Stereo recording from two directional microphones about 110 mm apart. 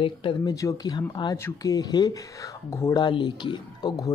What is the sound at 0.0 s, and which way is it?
Speech, 50° left (ahead or behind).